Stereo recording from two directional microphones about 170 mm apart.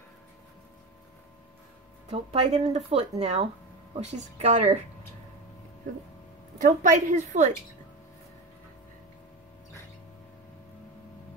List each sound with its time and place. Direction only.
2.0 s speech: 40° right (ahead or behind)
6.6 s a woman's voice: 50° right (ahead or behind)